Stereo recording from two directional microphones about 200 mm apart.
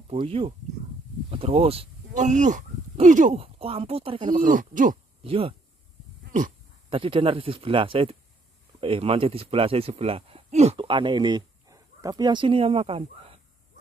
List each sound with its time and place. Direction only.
0.1 s speech: 30° right (ahead or behind)
4.3 s speech: 40° right (ahead or behind)
5.2 s speech: 25° right (ahead or behind)
6.9 s speech: 25° right (ahead or behind)